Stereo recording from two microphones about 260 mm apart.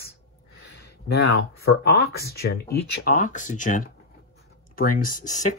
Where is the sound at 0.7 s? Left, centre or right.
Left.